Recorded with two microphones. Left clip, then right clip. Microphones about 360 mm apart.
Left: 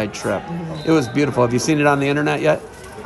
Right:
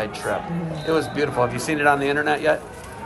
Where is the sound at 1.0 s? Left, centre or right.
Left.